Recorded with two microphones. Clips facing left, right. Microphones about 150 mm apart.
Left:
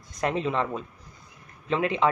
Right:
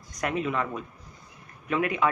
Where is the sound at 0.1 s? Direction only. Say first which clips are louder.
Left 2 dB; 30° left (ahead or behind).